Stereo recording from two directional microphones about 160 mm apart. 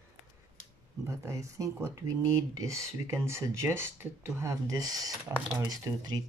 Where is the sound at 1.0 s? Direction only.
20° right (ahead or behind).